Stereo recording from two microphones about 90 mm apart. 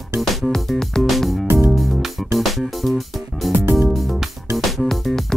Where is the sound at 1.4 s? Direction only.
25° right (ahead or behind).